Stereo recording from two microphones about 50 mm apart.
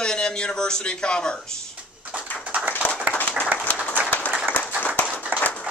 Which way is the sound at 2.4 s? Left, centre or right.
Right.